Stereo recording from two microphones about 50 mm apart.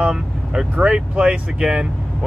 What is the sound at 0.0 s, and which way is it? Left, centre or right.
Speech, centre.